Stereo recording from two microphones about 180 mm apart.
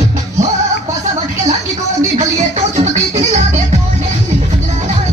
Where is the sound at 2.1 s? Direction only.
40° right (ahead or behind).